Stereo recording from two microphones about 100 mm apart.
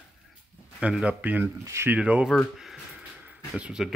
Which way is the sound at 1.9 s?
10° right (ahead or behind).